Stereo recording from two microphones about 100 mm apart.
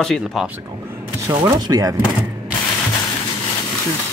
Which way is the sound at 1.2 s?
40° right (ahead or behind).